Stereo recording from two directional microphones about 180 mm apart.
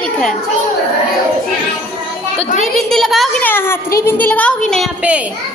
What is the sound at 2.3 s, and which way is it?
Speech, 35° left (ahead or behind).